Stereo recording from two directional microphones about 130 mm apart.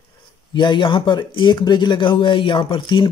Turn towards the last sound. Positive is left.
turn(degrees=35)  # may be behind; listen again after turning